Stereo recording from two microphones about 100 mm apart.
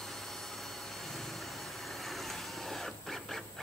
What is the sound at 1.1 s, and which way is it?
Vehicle, centre (ahead or behind).